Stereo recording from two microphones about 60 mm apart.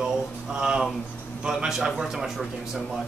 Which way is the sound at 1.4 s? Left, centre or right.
Centre.